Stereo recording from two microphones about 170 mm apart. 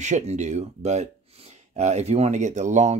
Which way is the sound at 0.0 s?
45° right (ahead or behind).